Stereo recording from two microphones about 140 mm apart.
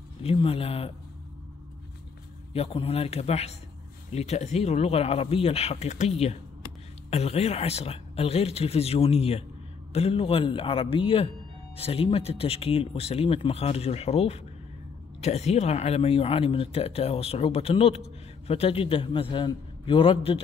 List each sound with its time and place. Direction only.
0.2 s speech: 40° left (ahead or behind)
2.5 s a man's voice: 45° left (ahead or behind)